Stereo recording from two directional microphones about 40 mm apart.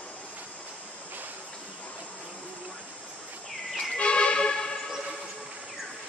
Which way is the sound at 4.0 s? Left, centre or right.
Left.